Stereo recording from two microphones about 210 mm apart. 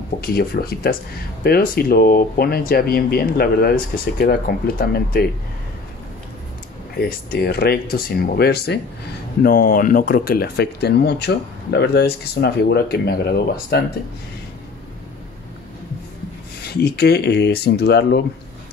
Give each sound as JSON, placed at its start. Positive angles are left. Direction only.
{"t": 0.2, "sound": "speech", "side_deg": 45}
{"t": 7.0, "sound": "speech", "side_deg": 45}
{"t": 16.6, "sound": "speech", "side_deg": 50}